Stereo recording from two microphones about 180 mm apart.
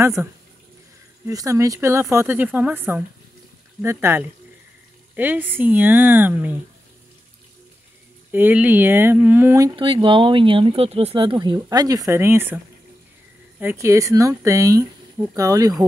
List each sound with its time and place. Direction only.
0.0 s speech: 15° right (ahead or behind)
8.3 s speech: 10° right (ahead or behind)
9.8 s speech: 30° right (ahead or behind); by 12.5 s 10° right (ahead or behind)
13.6 s speech: 15° right (ahead or behind)